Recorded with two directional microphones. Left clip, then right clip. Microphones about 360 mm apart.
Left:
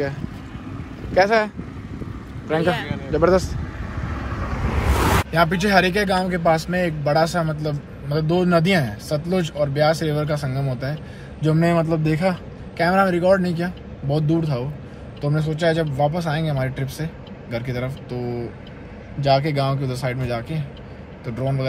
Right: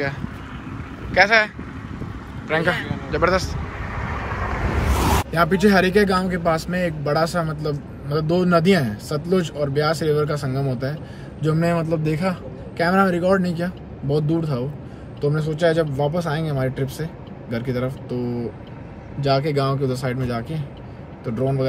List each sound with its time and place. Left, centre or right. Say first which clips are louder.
1.1 s speech: right 1 dB; centre
4.9 s a sound: left 2 dB; centre
5.3 s a man's voice: right 1 dB; centre
19.2 s a man's voice: left 1 dB; centre